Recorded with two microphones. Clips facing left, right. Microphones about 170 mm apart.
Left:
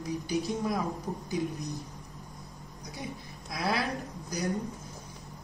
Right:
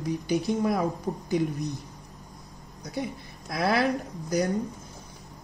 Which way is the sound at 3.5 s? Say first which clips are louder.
Right 6 dB; 65° right (ahead or behind).